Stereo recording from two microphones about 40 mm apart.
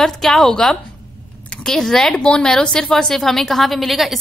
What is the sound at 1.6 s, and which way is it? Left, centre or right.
A woman's voice, centre.